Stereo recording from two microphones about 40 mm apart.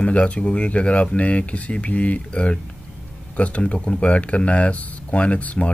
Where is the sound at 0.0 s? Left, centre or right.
Left.